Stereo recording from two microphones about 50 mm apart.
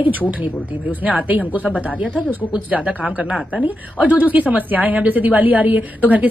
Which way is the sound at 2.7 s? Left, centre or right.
Right.